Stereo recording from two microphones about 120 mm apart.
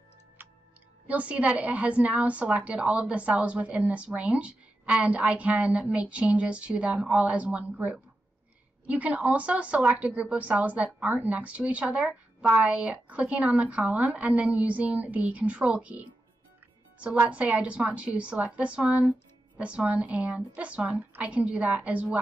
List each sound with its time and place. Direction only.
0.4 s music: 15° right (ahead or behind)
1.0 s speech: 10° right (ahead or behind)